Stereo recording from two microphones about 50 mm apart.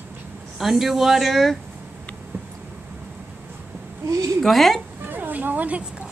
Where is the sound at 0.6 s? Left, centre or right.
Centre.